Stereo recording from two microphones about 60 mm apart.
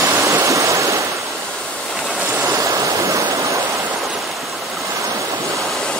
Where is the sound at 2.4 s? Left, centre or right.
Right.